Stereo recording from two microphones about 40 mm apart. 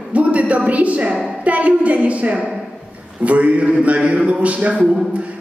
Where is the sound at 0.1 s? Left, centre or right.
Right.